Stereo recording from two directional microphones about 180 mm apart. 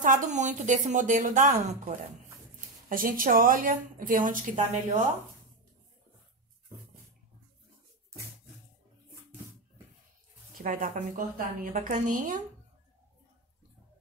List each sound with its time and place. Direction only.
0.0 s a woman's voice: 45° right (ahead or behind)
2.9 s a woman's voice: 50° right (ahead or behind)
10.6 s a woman's voice: 50° right (ahead or behind)